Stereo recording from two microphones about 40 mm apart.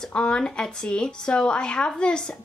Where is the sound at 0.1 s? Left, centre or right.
Left.